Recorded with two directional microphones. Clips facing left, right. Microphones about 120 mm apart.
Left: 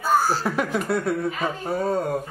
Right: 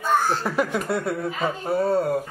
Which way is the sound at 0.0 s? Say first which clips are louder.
Left 1 dB; 5° left (ahead or behind).